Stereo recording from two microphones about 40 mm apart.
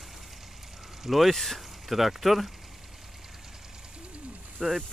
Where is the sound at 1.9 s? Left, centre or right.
Centre.